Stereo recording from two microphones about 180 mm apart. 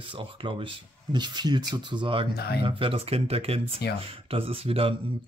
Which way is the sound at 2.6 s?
30° right (ahead or behind).